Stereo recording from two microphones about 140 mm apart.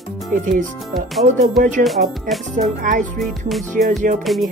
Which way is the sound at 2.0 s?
90° right.